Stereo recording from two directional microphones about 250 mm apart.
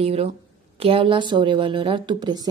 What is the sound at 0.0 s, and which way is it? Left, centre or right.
A woman's voice, right.